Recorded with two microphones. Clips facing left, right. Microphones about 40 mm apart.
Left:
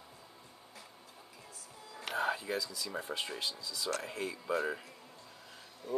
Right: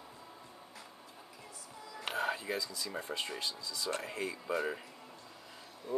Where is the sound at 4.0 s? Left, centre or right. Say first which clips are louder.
Even; centre.